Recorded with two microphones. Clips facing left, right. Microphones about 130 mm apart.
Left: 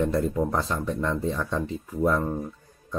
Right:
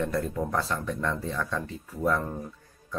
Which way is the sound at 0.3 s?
20° left (ahead or behind).